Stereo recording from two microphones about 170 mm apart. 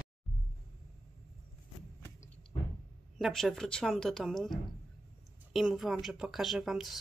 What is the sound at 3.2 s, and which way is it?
Speech, centre (ahead or behind).